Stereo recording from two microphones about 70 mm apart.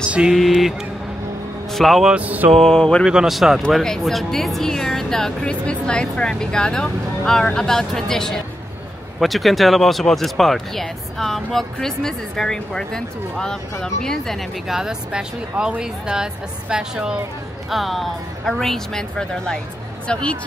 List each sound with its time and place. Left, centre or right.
0.3 s a man's voice: centre
2.0 s mantra: centre
2.5 s speech: centre
3.1 s speech: centre
14.8 s a woman's voice: centre
17.6 s speech: centre